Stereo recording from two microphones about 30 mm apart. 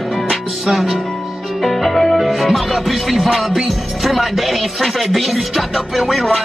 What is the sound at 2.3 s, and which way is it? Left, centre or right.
Speech, centre.